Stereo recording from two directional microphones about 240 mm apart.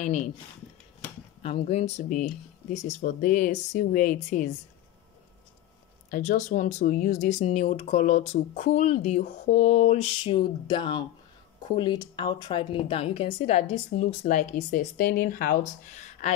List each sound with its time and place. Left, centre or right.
0.0 s speech: left
1.4 s speech: left
6.0 s speech: left